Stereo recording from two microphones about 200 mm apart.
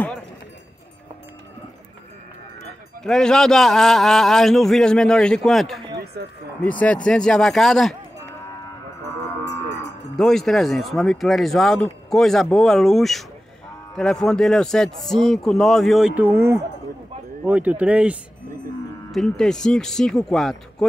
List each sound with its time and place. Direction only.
3.0 s speech: 5° left (ahead or behind)
6.2 s speech: 55° right (ahead or behind)
6.6 s speech: 5° left (ahead or behind)
10.1 s speech: centre (ahead or behind)
16.2 s speech: 10° right (ahead or behind)
19.1 s speech: centre (ahead or behind)